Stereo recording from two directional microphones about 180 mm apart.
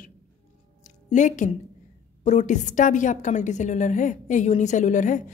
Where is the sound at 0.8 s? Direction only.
45° left (ahead or behind).